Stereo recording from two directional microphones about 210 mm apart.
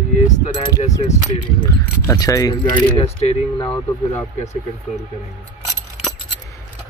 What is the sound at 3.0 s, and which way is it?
Speech, 30° left (ahead or behind).